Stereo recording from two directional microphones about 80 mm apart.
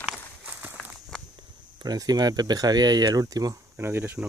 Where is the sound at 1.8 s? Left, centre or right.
Right.